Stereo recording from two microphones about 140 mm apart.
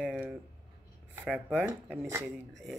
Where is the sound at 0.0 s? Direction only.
Centre (ahead or behind).